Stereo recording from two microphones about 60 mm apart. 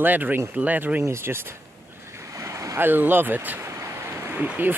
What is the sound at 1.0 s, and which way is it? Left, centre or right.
Speech, right.